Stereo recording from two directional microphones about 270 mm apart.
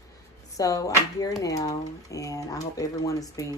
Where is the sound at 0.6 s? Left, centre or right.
Centre.